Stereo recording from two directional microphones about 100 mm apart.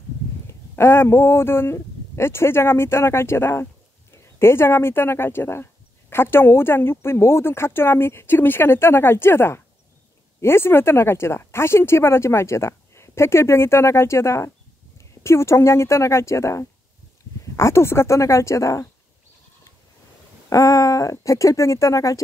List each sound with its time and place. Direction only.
0.5 s speech: 25° left (ahead or behind)
20.4 s speech: 35° left (ahead or behind)